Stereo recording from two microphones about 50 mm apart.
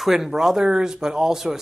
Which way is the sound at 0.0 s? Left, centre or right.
Centre.